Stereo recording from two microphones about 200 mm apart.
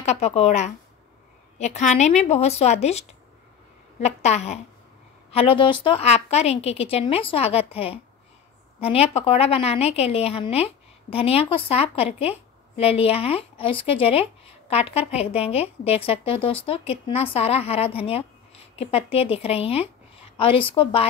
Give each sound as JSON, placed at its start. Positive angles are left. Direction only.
{"t": 0.0, "sound": "a woman's voice", "side_deg": 35}